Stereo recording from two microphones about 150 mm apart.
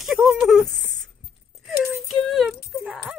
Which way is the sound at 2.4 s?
5° right (ahead or behind).